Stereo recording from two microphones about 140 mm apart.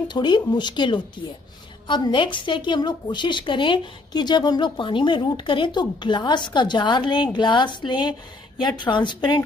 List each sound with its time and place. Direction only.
0.1 s a woman's voice: 30° left (ahead or behind)